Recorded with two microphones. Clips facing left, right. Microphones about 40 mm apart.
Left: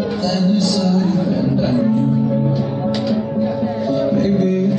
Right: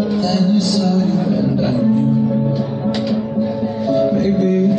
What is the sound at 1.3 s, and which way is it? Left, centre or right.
Music, centre.